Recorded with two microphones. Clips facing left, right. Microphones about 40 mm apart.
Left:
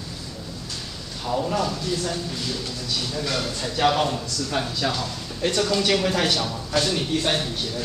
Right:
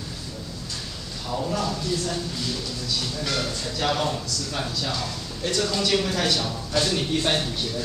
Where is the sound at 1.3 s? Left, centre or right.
Centre.